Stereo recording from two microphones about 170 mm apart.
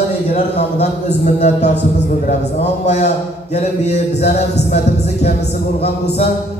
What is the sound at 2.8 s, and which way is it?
Speech, 40° left (ahead or behind).